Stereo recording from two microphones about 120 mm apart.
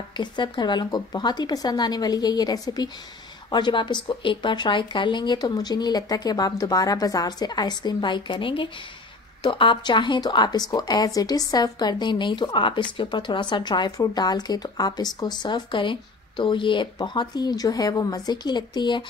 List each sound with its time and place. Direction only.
0.2 s a woman's voice: 40° left (ahead or behind)